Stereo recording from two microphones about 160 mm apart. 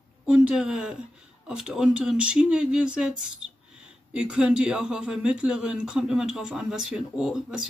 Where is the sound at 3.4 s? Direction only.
45° right (ahead or behind).